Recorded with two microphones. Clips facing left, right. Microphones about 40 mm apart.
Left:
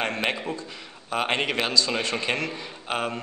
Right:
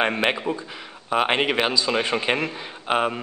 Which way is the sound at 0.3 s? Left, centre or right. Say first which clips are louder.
Right 4 dB; centre.